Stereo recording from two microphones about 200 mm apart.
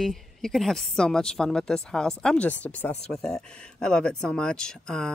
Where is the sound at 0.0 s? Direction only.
Centre (ahead or behind).